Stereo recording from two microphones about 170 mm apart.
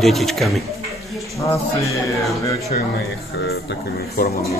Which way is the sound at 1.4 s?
20° left (ahead or behind).